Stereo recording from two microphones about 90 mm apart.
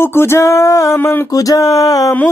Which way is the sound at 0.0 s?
25° left (ahead or behind).